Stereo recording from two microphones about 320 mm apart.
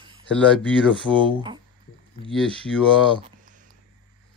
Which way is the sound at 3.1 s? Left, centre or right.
Right.